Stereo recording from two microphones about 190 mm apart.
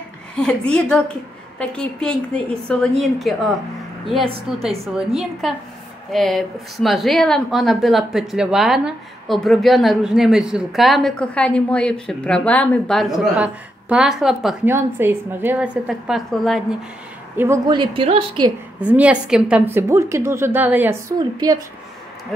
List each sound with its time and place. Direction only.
0.4 s a woman's voice: 5° left (ahead or behind)
4.6 s a woman's voice: centre (ahead or behind)
17.6 s a woman's voice: 25° right (ahead or behind)
18.8 s a woman's voice: 10° right (ahead or behind)